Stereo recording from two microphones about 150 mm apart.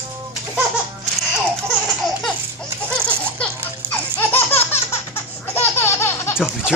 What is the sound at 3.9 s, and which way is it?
Laughter, 15° left (ahead or behind).